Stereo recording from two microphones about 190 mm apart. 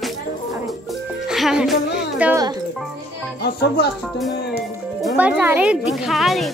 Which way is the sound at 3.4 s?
60° left (ahead or behind).